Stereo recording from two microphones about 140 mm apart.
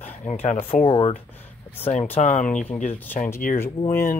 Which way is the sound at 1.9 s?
55° left (ahead or behind).